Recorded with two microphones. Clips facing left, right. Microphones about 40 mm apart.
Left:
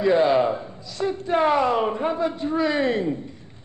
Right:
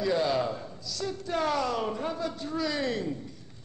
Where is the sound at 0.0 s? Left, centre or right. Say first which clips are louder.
Left 9 dB; left.